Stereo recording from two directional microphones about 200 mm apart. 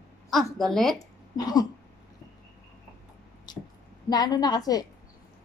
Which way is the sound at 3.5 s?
20° left (ahead or behind).